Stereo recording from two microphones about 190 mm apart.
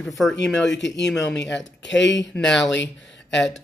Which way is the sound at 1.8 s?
70° left (ahead or behind).